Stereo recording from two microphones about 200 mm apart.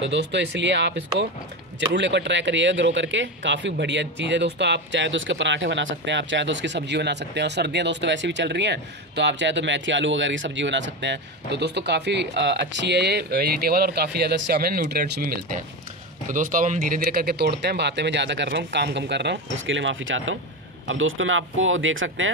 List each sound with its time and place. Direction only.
0.0 s speech: 60° right (ahead or behind)